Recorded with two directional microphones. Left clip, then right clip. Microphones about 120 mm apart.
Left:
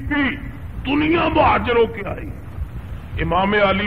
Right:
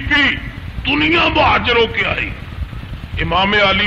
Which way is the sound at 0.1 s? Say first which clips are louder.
Right 7 dB; 30° left (ahead or behind).